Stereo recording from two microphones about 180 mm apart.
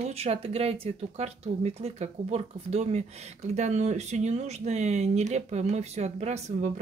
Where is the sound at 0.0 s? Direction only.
35° right (ahead or behind).